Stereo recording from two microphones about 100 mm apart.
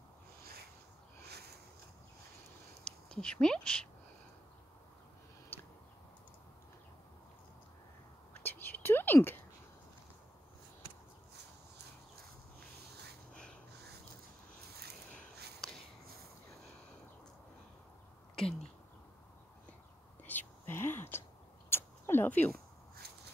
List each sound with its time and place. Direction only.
2.8 s speech: 10° left (ahead or behind)
5.5 s tick: 20° left (ahead or behind)
8.3 s whispering: 20° left (ahead or behind)
13.3 s snort: 10° left (ahead or behind)
18.3 s a sound: 5° left (ahead or behind)
20.2 s whispering: 20° left (ahead or behind)
21.6 s a sound: 25° left (ahead or behind)